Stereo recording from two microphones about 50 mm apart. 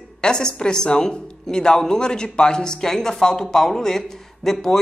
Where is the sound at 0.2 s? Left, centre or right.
Centre.